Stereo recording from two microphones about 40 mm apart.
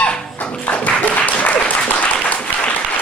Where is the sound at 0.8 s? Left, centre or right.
Left.